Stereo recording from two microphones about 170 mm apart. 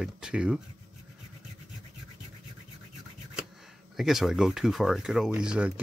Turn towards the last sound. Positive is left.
turn(degrees=-5)  # may be behind; listen again after turning